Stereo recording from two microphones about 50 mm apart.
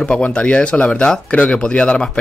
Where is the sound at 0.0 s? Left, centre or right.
Left.